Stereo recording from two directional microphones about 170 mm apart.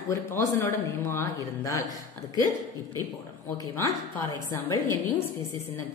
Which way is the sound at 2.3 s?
20° right (ahead or behind).